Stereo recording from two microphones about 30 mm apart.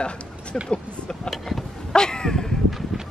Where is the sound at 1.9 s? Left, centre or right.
Left.